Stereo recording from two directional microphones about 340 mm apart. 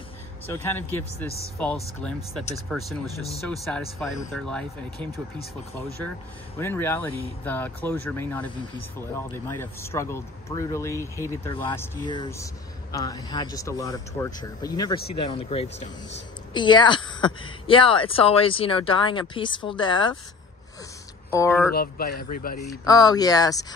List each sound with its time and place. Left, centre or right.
0.5 s a woman's voice: centre
6.6 s a woman's voice: centre
21.3 s a woman's voice: centre
21.7 s speech: left
22.8 s a woman's voice: centre